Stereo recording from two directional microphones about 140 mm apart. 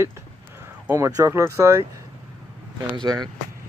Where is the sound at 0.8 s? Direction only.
20° right (ahead or behind).